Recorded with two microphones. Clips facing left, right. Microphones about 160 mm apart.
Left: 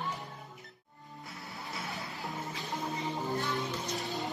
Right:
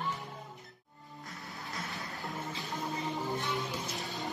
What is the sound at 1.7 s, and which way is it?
Music, centre (ahead or behind).